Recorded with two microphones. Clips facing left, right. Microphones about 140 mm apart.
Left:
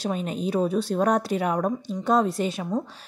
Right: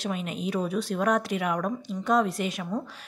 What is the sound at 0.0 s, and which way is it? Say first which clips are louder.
Speech: left 4 dB; 35° left (ahead or behind).